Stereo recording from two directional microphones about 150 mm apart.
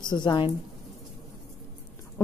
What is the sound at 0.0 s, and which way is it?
Speech, 30° left (ahead or behind).